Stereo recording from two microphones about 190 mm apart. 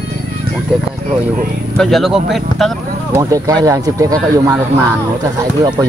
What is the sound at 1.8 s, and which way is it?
Speech, centre (ahead or behind).